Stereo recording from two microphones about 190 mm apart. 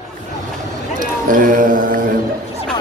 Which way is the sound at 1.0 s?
45° right (ahead or behind).